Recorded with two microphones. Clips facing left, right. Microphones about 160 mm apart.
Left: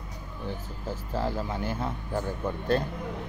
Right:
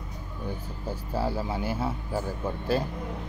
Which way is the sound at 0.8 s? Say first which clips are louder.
Right 1 dB; 10° right (ahead or behind).